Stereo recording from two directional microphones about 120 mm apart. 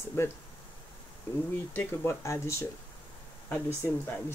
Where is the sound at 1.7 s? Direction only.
25° left (ahead or behind).